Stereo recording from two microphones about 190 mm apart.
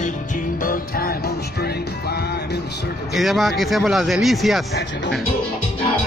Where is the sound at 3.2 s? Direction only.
Centre (ahead or behind).